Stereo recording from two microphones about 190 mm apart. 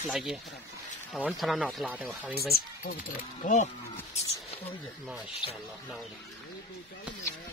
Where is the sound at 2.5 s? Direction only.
55° left (ahead or behind).